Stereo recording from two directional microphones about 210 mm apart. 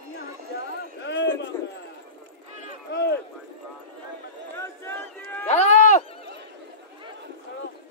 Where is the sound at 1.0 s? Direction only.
60° left (ahead or behind).